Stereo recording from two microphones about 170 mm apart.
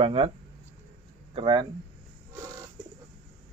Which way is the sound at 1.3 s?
30° right (ahead or behind).